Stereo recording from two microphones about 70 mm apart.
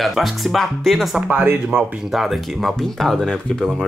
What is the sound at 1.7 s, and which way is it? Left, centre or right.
Speech, right.